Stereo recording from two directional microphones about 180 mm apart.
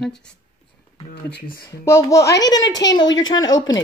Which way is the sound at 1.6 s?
15° left (ahead or behind).